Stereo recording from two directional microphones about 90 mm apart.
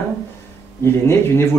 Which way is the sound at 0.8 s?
30° left (ahead or behind).